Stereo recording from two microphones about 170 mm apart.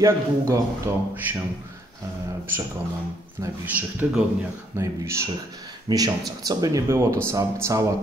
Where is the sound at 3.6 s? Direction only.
10° right (ahead or behind).